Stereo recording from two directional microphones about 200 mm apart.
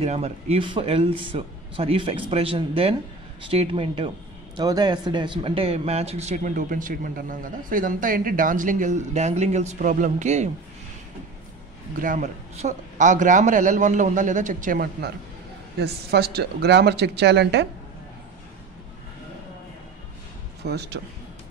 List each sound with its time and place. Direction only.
0.0 s speech: 30° right (ahead or behind)
12.0 s speech: 40° right (ahead or behind); by 17.6 s 60° right (ahead or behind)
20.6 s speech: 55° right (ahead or behind)